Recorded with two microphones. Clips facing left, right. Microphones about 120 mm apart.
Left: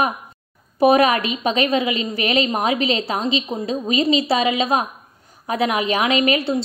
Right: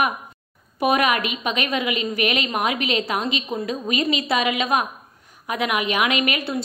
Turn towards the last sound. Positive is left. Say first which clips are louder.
# left 4 dB
turn(degrees=30)  # may be behind; listen again after turning